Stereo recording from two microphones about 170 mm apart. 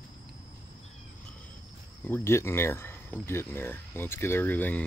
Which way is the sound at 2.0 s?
15° left (ahead or behind).